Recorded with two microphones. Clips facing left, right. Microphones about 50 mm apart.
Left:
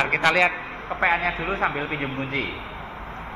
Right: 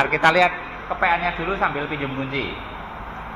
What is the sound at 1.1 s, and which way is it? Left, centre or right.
Speech, centre.